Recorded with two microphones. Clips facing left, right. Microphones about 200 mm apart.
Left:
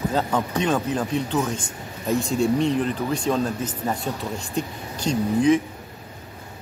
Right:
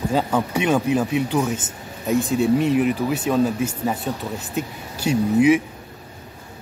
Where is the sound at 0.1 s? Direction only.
10° right (ahead or behind).